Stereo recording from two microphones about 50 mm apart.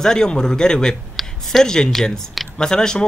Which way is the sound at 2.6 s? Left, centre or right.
Centre.